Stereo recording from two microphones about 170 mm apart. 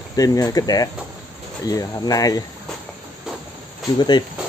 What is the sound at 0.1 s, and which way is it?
Speech, 20° left (ahead or behind).